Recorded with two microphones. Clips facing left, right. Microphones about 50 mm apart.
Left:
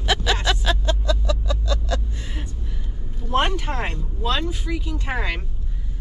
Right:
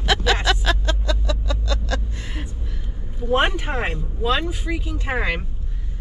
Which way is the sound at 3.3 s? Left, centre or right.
Centre.